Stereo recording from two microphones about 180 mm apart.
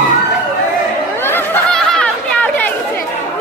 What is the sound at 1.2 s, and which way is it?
Chatter, 10° left (ahead or behind).